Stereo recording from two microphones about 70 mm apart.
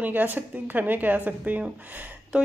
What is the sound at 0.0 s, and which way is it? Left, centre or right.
Speech, right.